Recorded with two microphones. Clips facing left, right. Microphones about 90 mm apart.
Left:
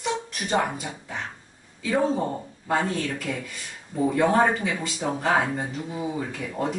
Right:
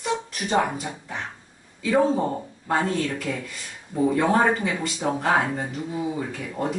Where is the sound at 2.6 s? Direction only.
Centre (ahead or behind).